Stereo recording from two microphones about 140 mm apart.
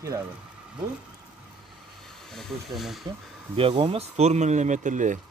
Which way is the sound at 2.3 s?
Centre (ahead or behind).